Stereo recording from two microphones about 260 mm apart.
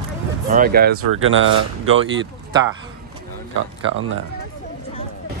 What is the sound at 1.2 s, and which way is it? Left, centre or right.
Speech, right.